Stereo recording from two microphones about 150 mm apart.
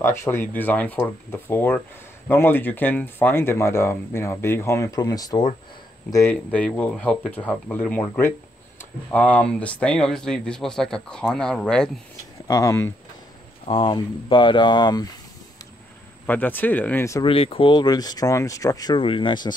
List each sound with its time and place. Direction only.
0.0 s speech: 15° left (ahead or behind)
6.5 s speech: 10° left (ahead or behind)
12.4 s speech: 20° left (ahead or behind)
13.7 s speech: 35° left (ahead or behind)
16.3 s speech: 10° left (ahead or behind)
17.2 s speech: 40° left (ahead or behind)